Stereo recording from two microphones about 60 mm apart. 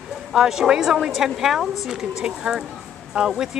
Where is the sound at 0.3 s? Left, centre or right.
Centre.